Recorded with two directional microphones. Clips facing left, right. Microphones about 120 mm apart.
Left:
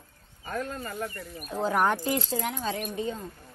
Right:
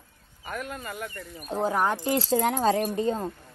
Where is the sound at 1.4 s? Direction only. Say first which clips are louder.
Even; 25° right (ahead or behind).